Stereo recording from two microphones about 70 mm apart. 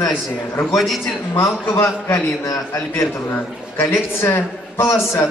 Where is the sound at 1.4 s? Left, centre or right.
Left.